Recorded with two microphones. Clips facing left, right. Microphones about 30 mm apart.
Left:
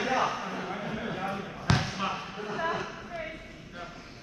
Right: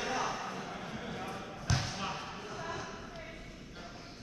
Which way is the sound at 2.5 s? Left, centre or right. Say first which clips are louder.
Left 11 dB; left.